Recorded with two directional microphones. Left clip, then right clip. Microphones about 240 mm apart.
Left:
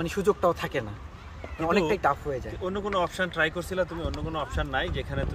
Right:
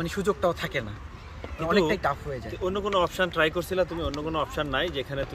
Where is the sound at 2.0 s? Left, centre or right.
Centre.